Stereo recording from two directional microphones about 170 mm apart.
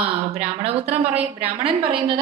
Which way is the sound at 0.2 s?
40° right (ahead or behind).